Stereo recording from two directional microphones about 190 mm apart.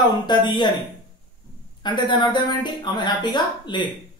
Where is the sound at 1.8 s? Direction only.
25° left (ahead or behind).